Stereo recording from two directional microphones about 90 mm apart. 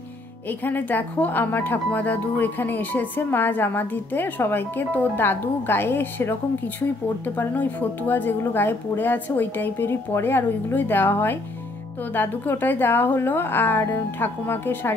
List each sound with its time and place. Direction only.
0.5 s speech: 20° left (ahead or behind)
7.3 s speech: 20° left (ahead or behind)